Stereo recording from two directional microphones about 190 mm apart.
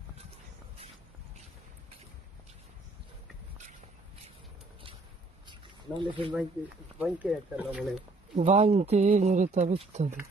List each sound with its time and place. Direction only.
5.5 s a sound: 25° right (ahead or behind)
7.0 s speech: 10° right (ahead or behind)
8.4 s speech: 35° right (ahead or behind)